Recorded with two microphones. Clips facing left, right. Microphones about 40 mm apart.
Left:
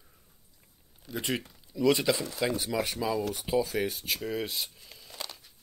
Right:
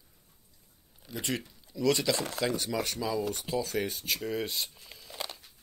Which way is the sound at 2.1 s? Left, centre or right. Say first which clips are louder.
Right 2 dB; right.